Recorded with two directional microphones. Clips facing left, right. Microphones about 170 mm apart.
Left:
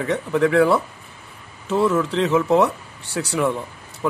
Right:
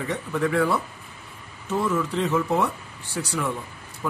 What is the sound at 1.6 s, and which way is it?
Speech, 85° left.